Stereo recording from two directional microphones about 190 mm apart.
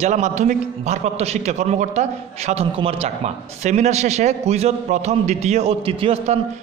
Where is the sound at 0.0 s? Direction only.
40° right (ahead or behind).